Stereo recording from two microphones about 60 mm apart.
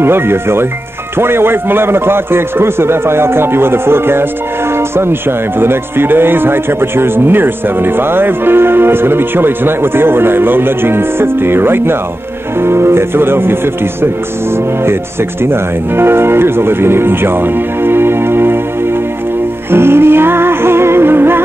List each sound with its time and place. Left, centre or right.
0.0 s speech: right
15.4 s speech: right
19.7 s music: right